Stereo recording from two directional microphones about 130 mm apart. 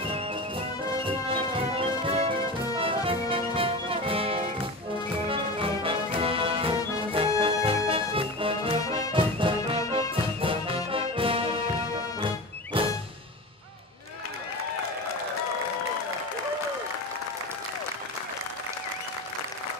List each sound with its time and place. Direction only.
0.9 s music: 45° right (ahead or behind)
10.9 s brass instrument: 45° right (ahead or behind)
12.7 s music: 45° right (ahead or behind)